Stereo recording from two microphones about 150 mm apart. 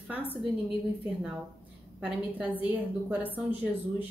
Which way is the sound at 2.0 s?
10° right (ahead or behind).